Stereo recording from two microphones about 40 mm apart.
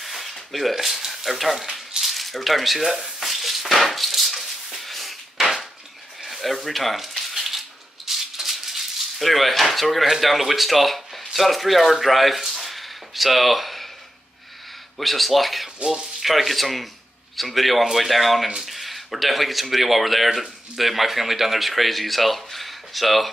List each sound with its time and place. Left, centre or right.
0.0 s a sound: centre
0.7 s speech: centre
1.7 s a sound: centre
10.1 s speech: centre
15.0 s speech: centre
15.8 s speech: right
16.2 s speech: centre